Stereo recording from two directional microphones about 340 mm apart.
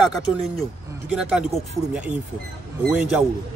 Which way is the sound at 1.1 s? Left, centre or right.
Centre.